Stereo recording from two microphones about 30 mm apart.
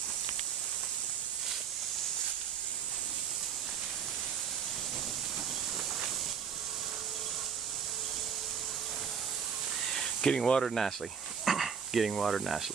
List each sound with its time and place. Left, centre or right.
10.2 s speech: left
10.6 s speech: centre
11.4 s a sound: centre